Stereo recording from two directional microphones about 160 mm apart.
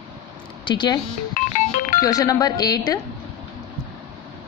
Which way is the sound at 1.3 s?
55° left (ahead or behind).